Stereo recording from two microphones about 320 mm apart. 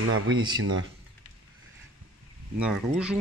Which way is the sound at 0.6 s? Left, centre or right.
Right.